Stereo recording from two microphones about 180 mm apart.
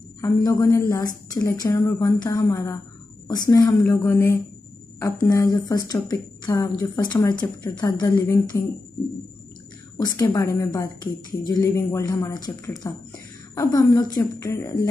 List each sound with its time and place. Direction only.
0.2 s a woman's voice: 15° left (ahead or behind)
9.9 s a woman's voice: 15° left (ahead or behind)